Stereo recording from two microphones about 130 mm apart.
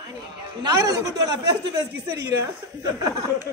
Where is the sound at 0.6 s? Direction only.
30° right (ahead or behind).